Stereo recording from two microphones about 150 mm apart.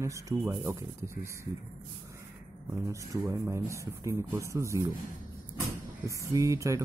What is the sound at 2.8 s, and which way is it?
Speech, 20° right (ahead or behind).